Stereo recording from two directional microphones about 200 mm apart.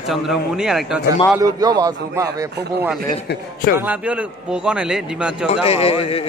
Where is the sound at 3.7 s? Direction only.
10° right (ahead or behind).